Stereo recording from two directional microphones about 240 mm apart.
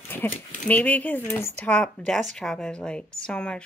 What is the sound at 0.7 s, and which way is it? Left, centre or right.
A woman's voice, centre.